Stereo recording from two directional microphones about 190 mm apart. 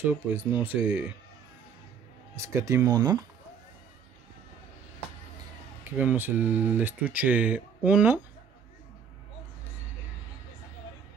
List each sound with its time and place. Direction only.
0.3 s speech: 10° right (ahead or behind)
2.3 s speech: 15° right (ahead or behind)
5.9 s speech: 10° right (ahead or behind)